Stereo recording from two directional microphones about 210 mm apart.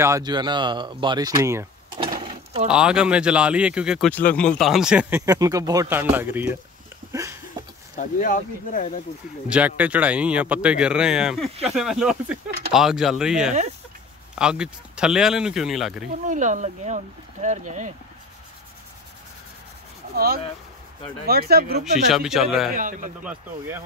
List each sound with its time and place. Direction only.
0.0 s speech: 15° right (ahead or behind)
2.0 s a sound: 25° right (ahead or behind)
2.7 s speech: 5° right (ahead or behind)
5.2 s speech: 15° right (ahead or behind)
7.1 s a sound: 15° right (ahead or behind)
8.0 s speech: 40° left (ahead or behind)
9.5 s speech: 5° right (ahead or behind)
16.3 s speech: 35° right (ahead or behind)
21.3 s speech: 45° right (ahead or behind)
22.1 s speech: centre (ahead or behind)
22.8 s speech: 40° right (ahead or behind)